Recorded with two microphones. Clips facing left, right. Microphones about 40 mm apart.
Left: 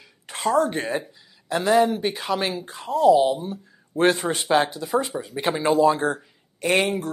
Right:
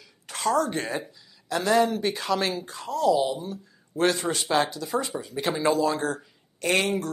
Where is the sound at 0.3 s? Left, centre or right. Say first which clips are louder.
Left 3 dB; left.